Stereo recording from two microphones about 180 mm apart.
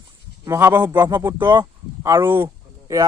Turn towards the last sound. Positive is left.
turn(degrees=-15)  # may be behind; listen again after turning